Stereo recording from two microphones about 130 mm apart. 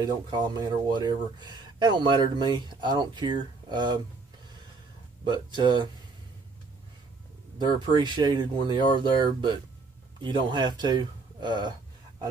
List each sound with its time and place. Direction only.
0.0 s speech: 30° right (ahead or behind)
5.2 s speech: 35° right (ahead or behind)
7.5 s speech: 35° right (ahead or behind)